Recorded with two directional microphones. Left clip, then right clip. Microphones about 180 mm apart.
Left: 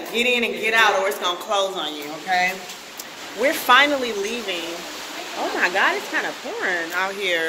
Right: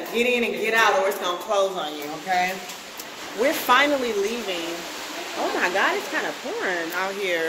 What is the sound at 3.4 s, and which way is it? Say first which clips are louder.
A woman's voice: left 3 dB; 5° right (ahead or behind).